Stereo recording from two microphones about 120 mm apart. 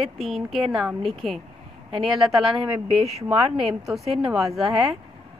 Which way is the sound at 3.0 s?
60° right (ahead or behind).